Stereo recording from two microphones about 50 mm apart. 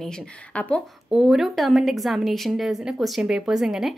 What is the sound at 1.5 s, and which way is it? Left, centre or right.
Speech, centre.